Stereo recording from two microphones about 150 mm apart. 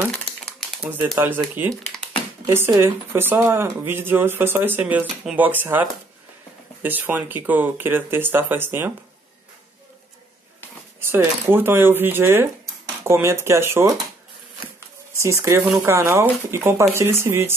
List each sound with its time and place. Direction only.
0.1 s crumpling: 5° left (ahead or behind)
0.9 s speech: 15° right (ahead or behind)
11.0 s speech: 15° right (ahead or behind)
15.2 s speech: 20° right (ahead or behind)